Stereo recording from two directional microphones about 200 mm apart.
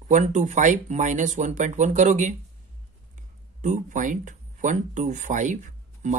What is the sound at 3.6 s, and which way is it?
Speech, 40° right (ahead or behind).